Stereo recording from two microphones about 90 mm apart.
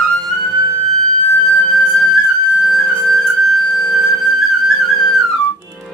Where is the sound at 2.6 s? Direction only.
Centre (ahead or behind).